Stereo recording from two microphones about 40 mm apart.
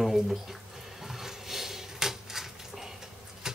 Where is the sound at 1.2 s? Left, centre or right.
Centre.